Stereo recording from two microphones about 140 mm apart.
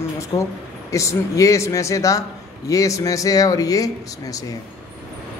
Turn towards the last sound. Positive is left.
turn(degrees=25)  # may be behind; listen again after turning